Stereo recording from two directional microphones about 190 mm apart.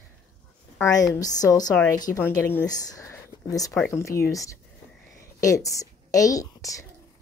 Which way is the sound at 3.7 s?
Centre (ahead or behind).